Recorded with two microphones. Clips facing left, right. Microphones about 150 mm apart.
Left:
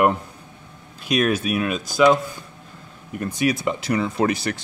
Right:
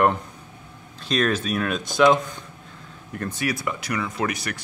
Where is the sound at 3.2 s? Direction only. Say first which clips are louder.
Left 5 dB; 15° left (ahead or behind); by 4.6 s 30° left (ahead or behind).